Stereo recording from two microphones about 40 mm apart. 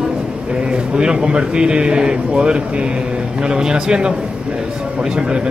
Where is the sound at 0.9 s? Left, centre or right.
Right.